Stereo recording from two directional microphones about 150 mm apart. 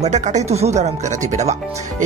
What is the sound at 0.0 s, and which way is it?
Speech, 50° right (ahead or behind).